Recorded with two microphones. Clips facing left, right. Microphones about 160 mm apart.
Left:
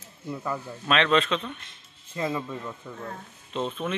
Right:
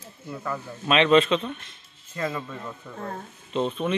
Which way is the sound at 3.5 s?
Centre (ahead or behind).